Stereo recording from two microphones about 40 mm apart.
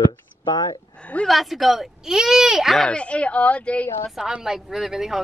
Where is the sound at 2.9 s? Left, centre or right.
Left.